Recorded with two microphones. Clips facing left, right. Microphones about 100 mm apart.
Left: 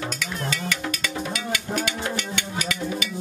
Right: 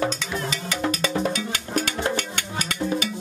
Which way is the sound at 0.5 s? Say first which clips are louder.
Right 2 dB; 35° right (ahead or behind).